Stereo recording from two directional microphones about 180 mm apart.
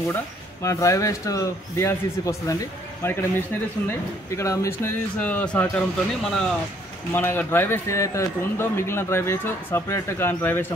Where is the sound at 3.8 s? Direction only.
15° left (ahead or behind).